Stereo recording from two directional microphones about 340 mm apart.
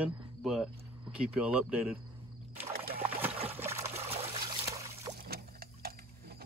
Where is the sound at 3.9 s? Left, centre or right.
Centre.